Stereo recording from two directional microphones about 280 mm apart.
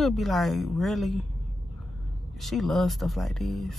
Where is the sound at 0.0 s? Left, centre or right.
Centre.